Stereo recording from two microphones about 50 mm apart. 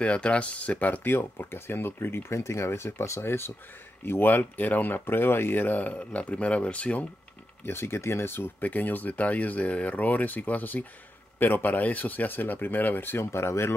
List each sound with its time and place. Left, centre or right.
0.0 s speech: left
1.0 s speech: left
7.6 s speech: left
13.2 s speech: left